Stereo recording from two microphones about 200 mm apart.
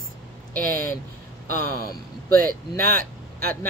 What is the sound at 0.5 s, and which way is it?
Speech, 45° right (ahead or behind).